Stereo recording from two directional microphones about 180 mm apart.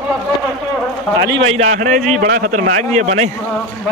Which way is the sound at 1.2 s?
30° right (ahead or behind).